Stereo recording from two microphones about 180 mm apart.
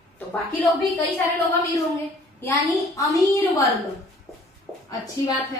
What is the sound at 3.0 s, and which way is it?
Speech, 20° left (ahead or behind).